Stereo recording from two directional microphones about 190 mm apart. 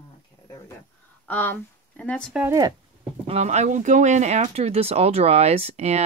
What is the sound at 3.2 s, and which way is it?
Speech, 35° right (ahead or behind).